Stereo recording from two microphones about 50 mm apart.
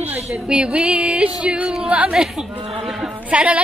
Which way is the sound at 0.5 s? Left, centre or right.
Right.